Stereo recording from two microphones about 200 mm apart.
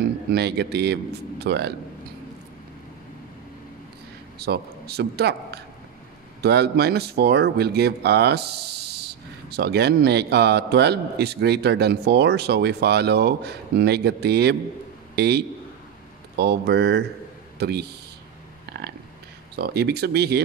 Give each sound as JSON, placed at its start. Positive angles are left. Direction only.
{"t": 0.0, "sound": "speech", "side_deg": -55}
{"t": 4.4, "sound": "speech", "side_deg": -55}
{"t": 18.7, "sound": "a sound", "side_deg": -55}
{"t": 19.5, "sound": "speech", "side_deg": -55}